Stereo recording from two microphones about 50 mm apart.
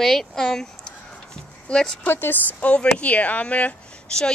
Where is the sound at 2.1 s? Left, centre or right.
Left.